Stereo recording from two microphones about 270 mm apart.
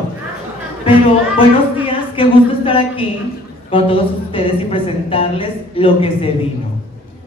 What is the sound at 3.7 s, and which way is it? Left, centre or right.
A woman's voice, centre.